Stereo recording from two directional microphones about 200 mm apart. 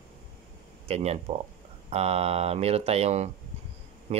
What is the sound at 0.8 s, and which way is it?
Speech, 30° right (ahead or behind).